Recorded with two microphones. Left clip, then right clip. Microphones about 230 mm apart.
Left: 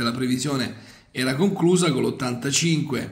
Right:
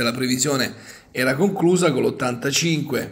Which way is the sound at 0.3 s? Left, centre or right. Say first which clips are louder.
Right 4 dB; centre.